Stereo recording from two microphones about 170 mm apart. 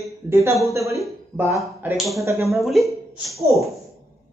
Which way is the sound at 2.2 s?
15° right (ahead or behind).